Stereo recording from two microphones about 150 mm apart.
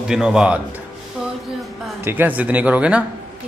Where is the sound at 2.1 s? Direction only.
10° right (ahead or behind).